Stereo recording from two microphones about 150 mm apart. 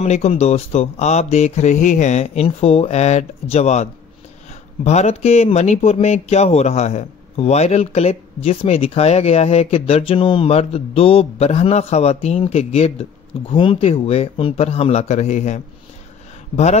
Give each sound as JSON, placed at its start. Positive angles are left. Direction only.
{"t": 0.0, "sound": "speech", "side_deg": 45}